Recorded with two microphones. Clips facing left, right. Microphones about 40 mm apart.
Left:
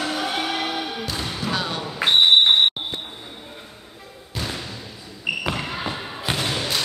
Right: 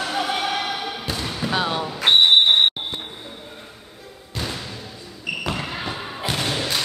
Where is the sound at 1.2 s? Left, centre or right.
Centre.